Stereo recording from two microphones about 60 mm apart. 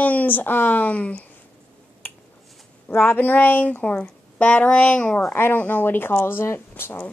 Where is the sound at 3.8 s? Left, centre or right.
Left.